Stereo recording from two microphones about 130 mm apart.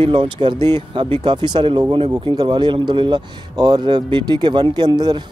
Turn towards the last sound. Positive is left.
turn(degrees=-35)  # may be behind; listen again after turning